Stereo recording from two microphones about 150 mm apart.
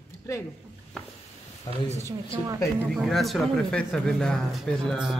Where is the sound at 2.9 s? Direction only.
Centre (ahead or behind).